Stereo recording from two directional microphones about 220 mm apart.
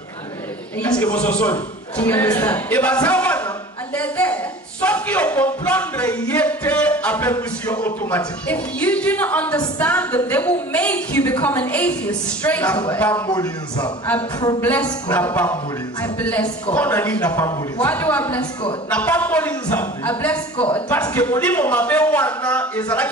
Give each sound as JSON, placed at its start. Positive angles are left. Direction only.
{"t": 0.7, "sound": "a man's voice", "side_deg": 5}
{"t": 4.8, "sound": "music", "side_deg": 5}
{"t": 13.3, "sound": "speech", "side_deg": 20}
{"t": 14.6, "sound": "music", "side_deg": 10}